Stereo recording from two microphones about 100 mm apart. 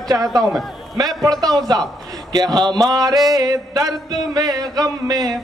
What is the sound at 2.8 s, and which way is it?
Music, 40° right (ahead or behind).